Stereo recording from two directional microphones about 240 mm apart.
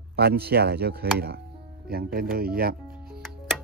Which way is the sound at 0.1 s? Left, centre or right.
Right.